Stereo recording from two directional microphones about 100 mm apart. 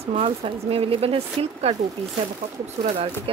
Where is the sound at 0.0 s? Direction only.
70° right (ahead or behind); by 1.8 s 90° right.